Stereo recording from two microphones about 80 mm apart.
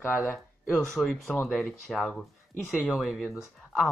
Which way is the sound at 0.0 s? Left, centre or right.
Left.